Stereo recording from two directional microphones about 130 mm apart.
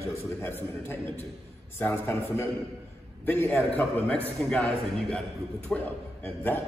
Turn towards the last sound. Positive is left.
turn(degrees=15)  # may be behind; listen again after turning